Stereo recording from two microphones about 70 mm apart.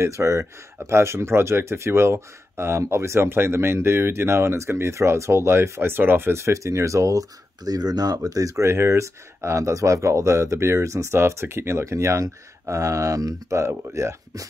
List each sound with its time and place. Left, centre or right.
0.0 s speech: right